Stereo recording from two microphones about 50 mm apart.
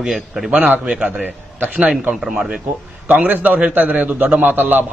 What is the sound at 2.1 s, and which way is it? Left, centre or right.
Speech, centre.